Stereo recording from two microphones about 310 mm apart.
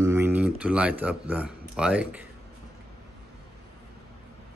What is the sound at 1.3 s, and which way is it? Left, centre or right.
Speech, centre.